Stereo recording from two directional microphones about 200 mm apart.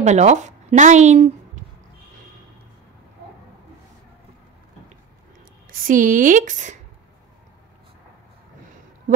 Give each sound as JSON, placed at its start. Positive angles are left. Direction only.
{"t": 0.0, "sound": "speech", "side_deg": -35}
{"t": 5.7, "sound": "speech", "side_deg": -45}